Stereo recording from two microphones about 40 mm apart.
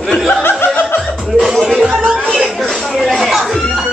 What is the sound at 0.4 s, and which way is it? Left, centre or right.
Chuckle, left.